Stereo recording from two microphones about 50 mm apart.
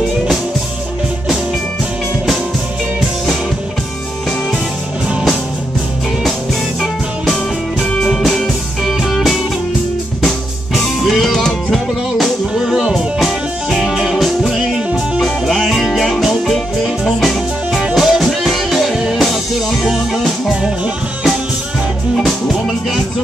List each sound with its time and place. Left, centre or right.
8.0 s music: centre
10.7 s music: centre
12.6 s music: centre
20.6 s music: centre